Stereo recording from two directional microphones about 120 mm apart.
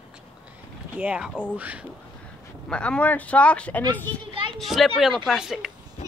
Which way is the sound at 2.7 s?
10° left (ahead or behind).